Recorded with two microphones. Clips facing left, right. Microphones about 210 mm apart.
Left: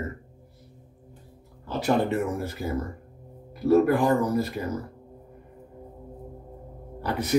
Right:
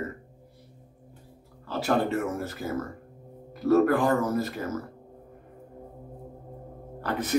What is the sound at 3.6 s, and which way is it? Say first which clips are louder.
Speech: left 1 dB; 15° left (ahead or behind).